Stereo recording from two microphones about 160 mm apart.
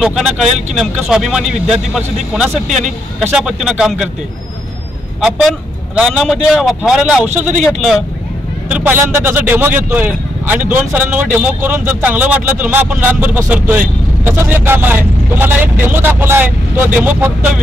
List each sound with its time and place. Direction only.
0.0 s a man's voice: 5° right (ahead or behind)
5.2 s a man's voice: centre (ahead or behind)
8.6 s speech: 10° right (ahead or behind)